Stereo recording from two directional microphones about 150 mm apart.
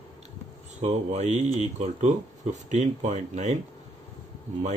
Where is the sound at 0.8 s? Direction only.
50° right (ahead or behind).